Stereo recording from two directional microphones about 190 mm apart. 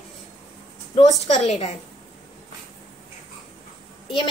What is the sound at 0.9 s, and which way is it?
Speech, 35° left (ahead or behind).